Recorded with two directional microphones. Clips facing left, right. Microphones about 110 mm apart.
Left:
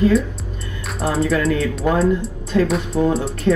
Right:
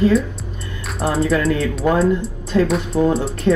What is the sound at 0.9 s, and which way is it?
Speech, centre (ahead or behind).